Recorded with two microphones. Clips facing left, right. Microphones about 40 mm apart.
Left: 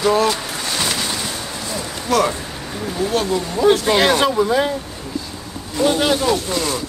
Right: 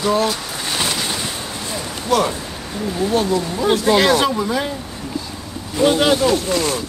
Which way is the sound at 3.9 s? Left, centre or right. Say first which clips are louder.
Even; centre.